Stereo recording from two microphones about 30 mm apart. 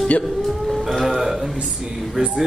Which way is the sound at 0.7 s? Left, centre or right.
Centre.